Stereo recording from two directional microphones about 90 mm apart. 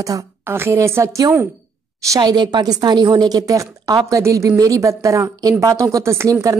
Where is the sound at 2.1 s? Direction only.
50° right (ahead or behind).